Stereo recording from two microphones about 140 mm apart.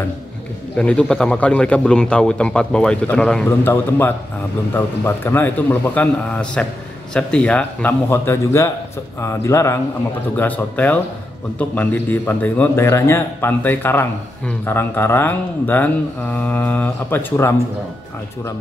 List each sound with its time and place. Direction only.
0.7 s a man's voice: 5° left (ahead or behind)